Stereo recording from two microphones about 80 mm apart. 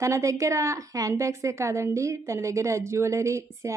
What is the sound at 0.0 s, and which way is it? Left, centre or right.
A woman's voice, right.